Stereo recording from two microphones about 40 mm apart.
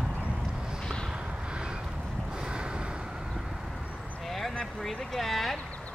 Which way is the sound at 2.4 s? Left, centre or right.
Right.